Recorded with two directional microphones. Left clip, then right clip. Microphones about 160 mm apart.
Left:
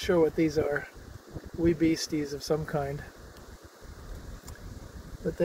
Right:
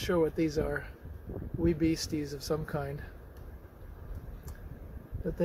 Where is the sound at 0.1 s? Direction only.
5° left (ahead or behind).